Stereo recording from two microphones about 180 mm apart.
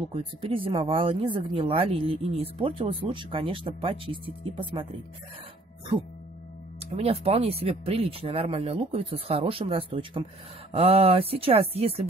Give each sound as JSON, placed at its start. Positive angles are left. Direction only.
{"t": 0.1, "sound": "speech", "side_deg": -30}
{"t": 6.9, "sound": "speech", "side_deg": -35}